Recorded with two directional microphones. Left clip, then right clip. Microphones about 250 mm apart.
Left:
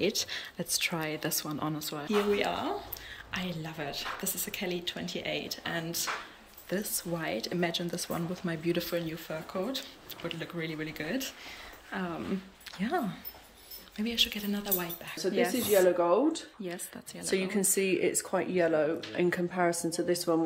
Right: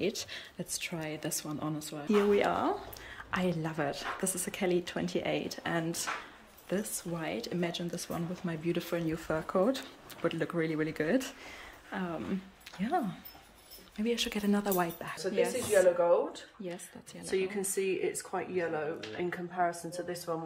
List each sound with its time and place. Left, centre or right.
0.0 s speech: centre
2.0 s a woman's voice: centre
11.9 s a woman's voice: centre
15.4 s speech: centre
16.0 s speech: left
16.6 s speech: centre
17.3 s speech: left